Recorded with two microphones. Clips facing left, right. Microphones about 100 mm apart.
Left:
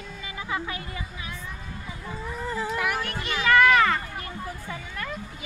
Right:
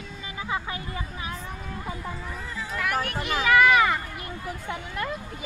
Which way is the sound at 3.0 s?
5° right (ahead or behind).